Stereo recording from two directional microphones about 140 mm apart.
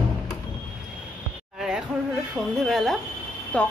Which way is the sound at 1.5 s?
5° right (ahead or behind).